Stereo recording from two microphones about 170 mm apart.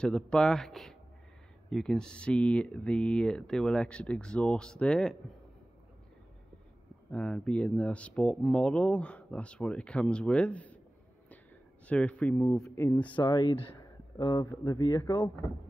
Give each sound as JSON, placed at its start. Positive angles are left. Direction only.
{"t": 0.0, "sound": "speech", "side_deg": 5}
{"t": 7.1, "sound": "speech", "side_deg": 5}
{"t": 11.9, "sound": "speech", "side_deg": 5}
{"t": 13.1, "sound": "speech", "side_deg": 25}